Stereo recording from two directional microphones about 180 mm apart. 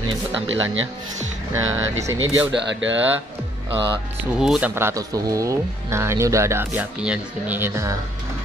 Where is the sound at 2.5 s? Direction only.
90° right.